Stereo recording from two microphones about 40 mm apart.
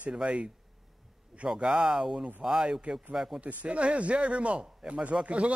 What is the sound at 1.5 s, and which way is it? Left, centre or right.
Speech, centre.